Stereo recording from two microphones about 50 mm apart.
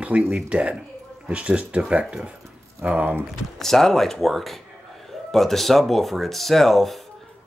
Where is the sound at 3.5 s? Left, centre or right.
Centre.